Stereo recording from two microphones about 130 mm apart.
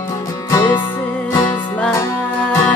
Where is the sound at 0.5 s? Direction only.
30° left (ahead or behind).